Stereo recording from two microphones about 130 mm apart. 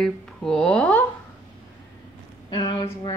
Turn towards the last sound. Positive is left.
turn(degrees=35)  # may be behind; listen again after turning